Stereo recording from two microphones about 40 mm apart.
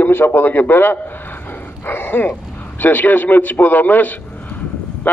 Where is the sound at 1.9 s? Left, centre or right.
Left.